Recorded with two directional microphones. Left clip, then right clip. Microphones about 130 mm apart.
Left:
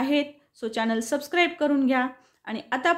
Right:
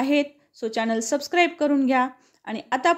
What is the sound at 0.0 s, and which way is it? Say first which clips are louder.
Speech: right 3 dB; 40° right (ahead or behind).